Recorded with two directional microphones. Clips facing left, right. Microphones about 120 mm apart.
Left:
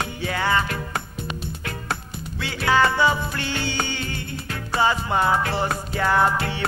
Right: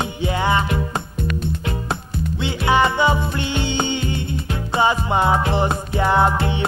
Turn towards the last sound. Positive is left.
turn(degrees=-20)  # may be behind; listen again after turning